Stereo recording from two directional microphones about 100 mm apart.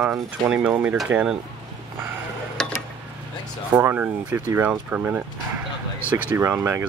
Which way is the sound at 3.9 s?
20° right (ahead or behind).